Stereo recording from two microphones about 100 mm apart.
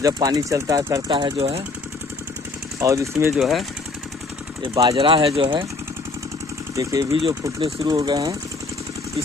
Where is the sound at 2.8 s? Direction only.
30° right (ahead or behind).